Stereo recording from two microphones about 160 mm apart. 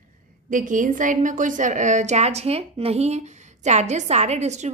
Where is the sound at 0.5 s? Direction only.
55° right (ahead or behind).